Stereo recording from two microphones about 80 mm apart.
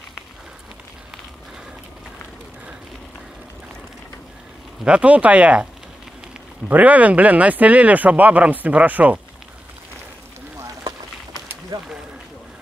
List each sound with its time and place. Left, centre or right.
4.8 s speech: centre
6.7 s speech: centre
11.7 s a sound: right